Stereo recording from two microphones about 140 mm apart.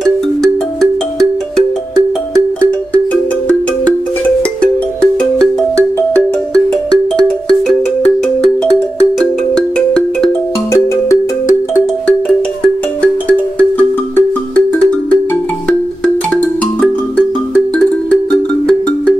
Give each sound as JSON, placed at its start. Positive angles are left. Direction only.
{"t": 0.0, "sound": "music", "side_deg": 0}
{"t": 2.6, "sound": "music", "side_deg": 10}
{"t": 7.2, "sound": "music", "side_deg": 0}
{"t": 9.2, "sound": "music", "side_deg": 5}
{"t": 10.7, "sound": "music", "side_deg": 20}
{"t": 13.6, "sound": "music", "side_deg": 10}
{"t": 17.7, "sound": "music", "side_deg": 5}